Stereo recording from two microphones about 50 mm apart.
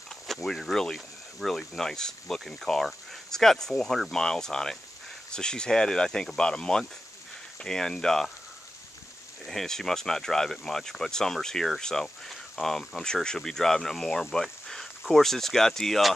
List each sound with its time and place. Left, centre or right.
0.3 s speech: centre
9.5 s speech: centre